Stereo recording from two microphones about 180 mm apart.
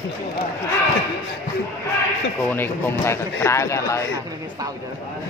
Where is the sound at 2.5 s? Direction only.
10° left (ahead or behind).